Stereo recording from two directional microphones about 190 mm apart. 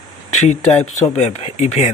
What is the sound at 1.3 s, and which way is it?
Speech, 35° left (ahead or behind).